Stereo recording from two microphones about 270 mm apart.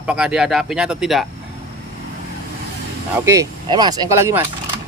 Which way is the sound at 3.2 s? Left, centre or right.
Centre.